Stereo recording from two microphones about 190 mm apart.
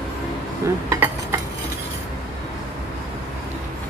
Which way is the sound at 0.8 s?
10° right (ahead or behind).